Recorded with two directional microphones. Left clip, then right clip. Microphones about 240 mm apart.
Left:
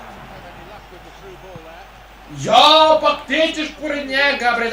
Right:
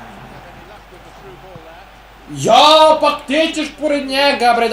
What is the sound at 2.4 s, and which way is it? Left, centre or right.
A man's voice, centre.